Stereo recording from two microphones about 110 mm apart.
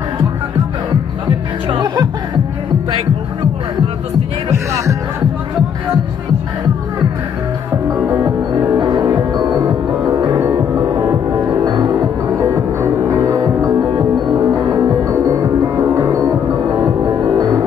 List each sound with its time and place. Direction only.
1.7 s music: 45° right (ahead or behind)
4.1 s music: 25° right (ahead or behind)
7.7 s music: 15° right (ahead or behind)
8.7 s music: 45° right (ahead or behind); by 11.1 s 20° right (ahead or behind)
11.3 s music: 40° right (ahead or behind)